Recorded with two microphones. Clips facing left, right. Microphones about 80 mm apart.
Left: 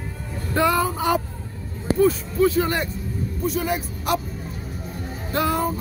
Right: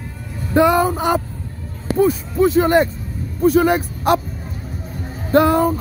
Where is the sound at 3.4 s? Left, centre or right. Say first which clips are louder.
Right 11 dB; right.